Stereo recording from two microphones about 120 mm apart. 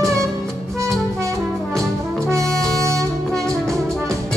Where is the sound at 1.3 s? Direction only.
5° left (ahead or behind).